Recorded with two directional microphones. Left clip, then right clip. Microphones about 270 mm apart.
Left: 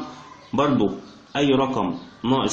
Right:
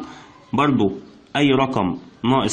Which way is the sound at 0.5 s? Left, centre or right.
Right.